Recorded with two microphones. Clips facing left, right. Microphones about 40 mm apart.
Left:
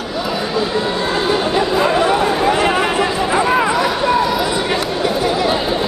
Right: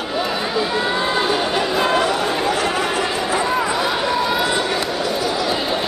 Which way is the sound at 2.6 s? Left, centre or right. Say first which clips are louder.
Left 5 dB; left.